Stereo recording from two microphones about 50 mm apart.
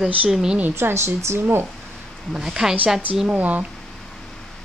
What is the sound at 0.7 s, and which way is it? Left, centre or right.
Speech, right.